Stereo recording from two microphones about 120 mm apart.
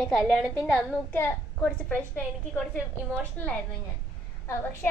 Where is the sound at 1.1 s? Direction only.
15° left (ahead or behind).